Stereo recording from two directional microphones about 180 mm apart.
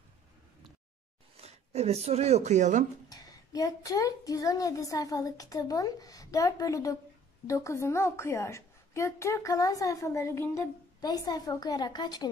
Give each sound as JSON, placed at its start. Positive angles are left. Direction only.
{"t": 1.3, "sound": "speech", "side_deg": -35}
{"t": 3.1, "sound": "a woman's voice", "side_deg": 20}